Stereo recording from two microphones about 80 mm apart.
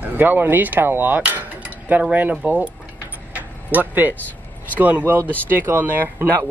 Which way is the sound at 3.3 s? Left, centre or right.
Right.